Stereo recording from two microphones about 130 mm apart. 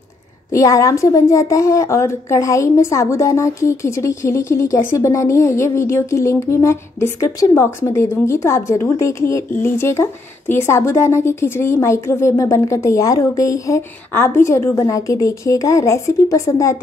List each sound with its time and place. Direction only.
0.5 s speech: 25° left (ahead or behind)